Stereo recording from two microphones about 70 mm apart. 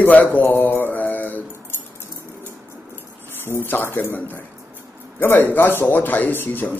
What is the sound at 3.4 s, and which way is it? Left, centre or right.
Speech, left.